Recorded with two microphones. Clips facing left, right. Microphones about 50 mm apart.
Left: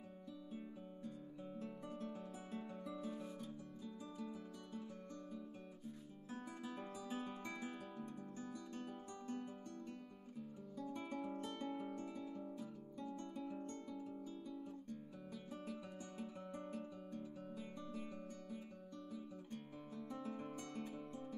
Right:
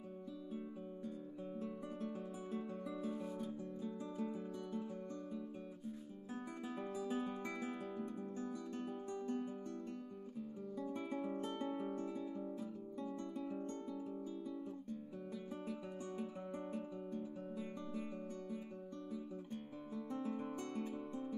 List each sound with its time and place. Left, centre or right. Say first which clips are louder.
1.6 s music: right 3 dB; centre
3.8 s music: right 6 dB; right
6.3 s guitar: right 3 dB; centre
7.4 s music: right 4 dB; centre
10.8 s guitar: right 3 dB; centre
11.9 s music: right 5 dB; centre
13.1 s guitar: right 2 dB; centre
13.7 s music: right 4 dB; centre
15.5 s music: right 2 dB; centre
19.1 s guitar: right 4 dB; centre
20.5 s music: right 5 dB; centre